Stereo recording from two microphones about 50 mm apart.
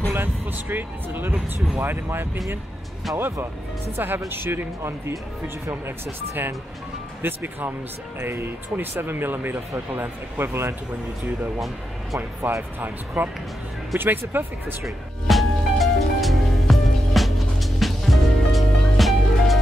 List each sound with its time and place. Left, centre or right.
0.1 s speech: right
3.9 s speech: right
7.2 s speech: right
10.4 s a man's voice: right
12.4 s speech: right
15.2 s music: centre